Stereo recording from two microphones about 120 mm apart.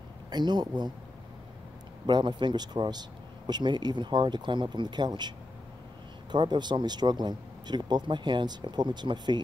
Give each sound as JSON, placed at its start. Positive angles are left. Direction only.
{"t": 0.3, "sound": "speech", "side_deg": -40}
{"t": 2.0, "sound": "speech", "side_deg": -40}
{"t": 6.3, "sound": "speech", "side_deg": -40}